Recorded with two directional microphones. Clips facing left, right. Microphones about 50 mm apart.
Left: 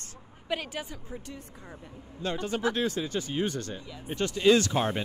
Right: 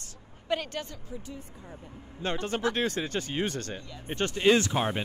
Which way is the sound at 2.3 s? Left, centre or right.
Right.